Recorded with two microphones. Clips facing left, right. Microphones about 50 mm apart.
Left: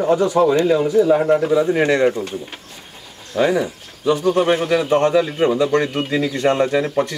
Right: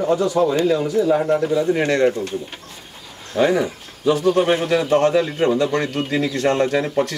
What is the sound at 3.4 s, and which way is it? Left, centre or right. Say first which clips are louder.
Speech: even; centre.